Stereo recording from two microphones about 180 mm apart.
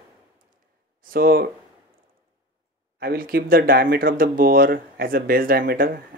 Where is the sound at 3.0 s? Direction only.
55° right (ahead or behind).